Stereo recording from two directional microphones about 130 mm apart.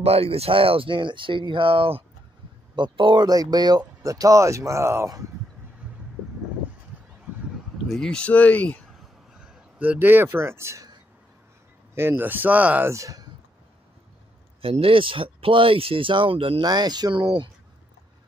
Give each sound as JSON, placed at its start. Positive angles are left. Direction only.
{"t": 0.0, "sound": "speech", "side_deg": -50}
{"t": 7.7, "sound": "speech", "side_deg": 5}
{"t": 9.4, "sound": "speech", "side_deg": -10}
{"t": 11.9, "sound": "speech", "side_deg": -20}
{"t": 12.9, "sound": "speech", "side_deg": -25}
{"t": 14.6, "sound": "speech", "side_deg": -50}